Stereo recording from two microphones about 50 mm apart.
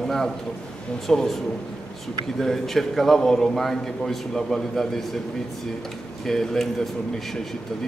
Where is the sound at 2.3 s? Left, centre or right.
Centre.